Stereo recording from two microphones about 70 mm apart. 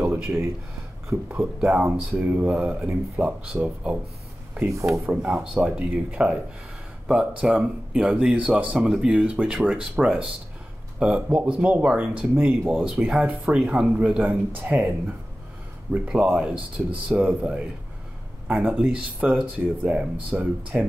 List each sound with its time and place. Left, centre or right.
0.0 s a sound: centre
1.6 s speech: centre
4.6 s speech: right
5.0 s speech: centre
8.7 s speech: centre
12.4 s speech: right
12.8 s speech: centre
15.9 s speech: centre
18.5 s speech: right